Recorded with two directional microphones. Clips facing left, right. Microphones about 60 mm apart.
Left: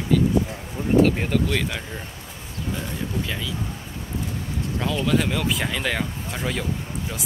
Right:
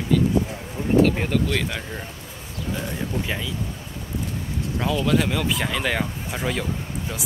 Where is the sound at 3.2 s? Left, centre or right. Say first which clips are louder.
Right 1 dB; centre.